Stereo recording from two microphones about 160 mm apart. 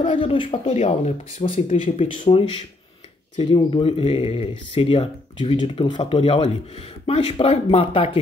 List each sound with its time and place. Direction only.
0.0 s speech: 30° left (ahead or behind)